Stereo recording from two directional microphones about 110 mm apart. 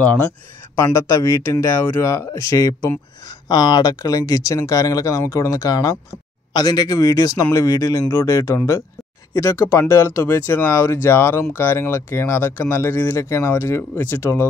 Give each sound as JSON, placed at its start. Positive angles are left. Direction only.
{"t": 0.7, "sound": "speech", "side_deg": 30}